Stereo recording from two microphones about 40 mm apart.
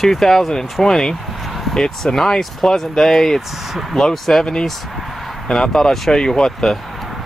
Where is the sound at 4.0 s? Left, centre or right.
Centre.